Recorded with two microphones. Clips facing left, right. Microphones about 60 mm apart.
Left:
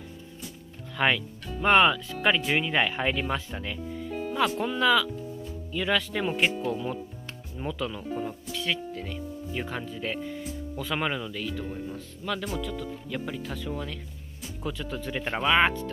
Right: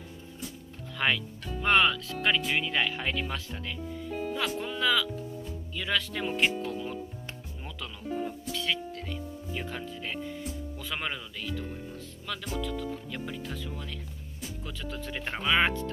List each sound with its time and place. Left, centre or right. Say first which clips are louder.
0.9 s speech: left 3 dB; centre
1.6 s speech: left 4 dB; left
3.8 s speech: right 1 dB; centre